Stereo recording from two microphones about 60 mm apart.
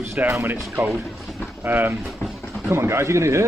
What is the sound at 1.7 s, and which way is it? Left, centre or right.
Speech, right.